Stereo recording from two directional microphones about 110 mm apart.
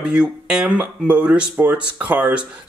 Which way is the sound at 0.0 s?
5° right (ahead or behind).